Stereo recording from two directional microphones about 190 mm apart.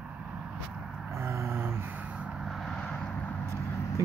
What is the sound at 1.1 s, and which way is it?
Vehicle, 15° right (ahead or behind).